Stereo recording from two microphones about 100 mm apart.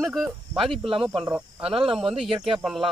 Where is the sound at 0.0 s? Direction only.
Centre (ahead or behind).